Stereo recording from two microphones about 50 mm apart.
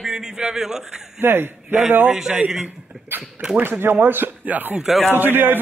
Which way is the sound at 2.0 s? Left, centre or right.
Centre.